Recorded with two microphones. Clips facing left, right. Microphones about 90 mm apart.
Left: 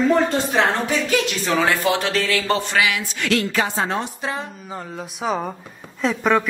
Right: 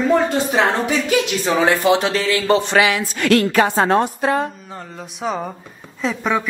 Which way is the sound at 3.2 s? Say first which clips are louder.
Right 6 dB; 55° right (ahead or behind).